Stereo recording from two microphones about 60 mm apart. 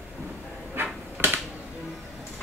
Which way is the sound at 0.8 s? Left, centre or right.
Right.